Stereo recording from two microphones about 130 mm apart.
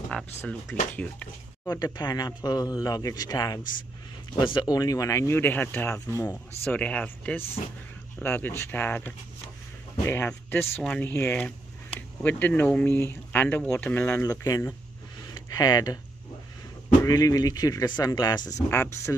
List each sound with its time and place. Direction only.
0.4 s speech: 15° left (ahead or behind)
1.7 s speech: 30° left (ahead or behind); by 14.2 s 15° left (ahead or behind)
14.2 s speech: 25° left (ahead or behind)
17.0 s speech: 25° left (ahead or behind)
18.7 s speech: 20° left (ahead or behind)